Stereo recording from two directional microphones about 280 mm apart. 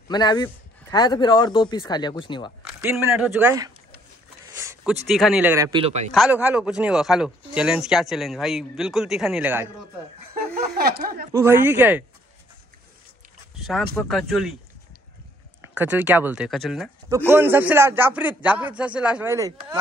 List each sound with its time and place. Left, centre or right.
0.1 s speech: centre
2.8 s a man's voice: centre
4.5 s a sound: centre
5.0 s a man's voice: centre; by 6.1 s right
6.1 s speech: centre
10.3 s a sound: right
11.3 s a man's voice: centre
13.6 s a sound: centre
13.9 s speech: centre
15.7 s a man's voice: centre